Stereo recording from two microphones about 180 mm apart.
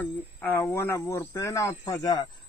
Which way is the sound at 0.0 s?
10° left (ahead or behind).